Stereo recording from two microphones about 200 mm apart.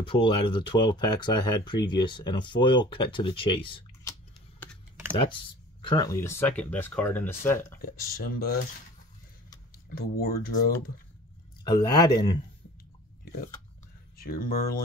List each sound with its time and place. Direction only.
0.0 s speech: 25° left (ahead or behind)
5.1 s speech: 25° left (ahead or behind); by 7.5 s 10° left (ahead or behind)
7.8 s speech: 50° left (ahead or behind)
10.1 s speech: 50° left (ahead or behind)
11.6 s speech: 20° left (ahead or behind)
14.1 s speech: 50° left (ahead or behind)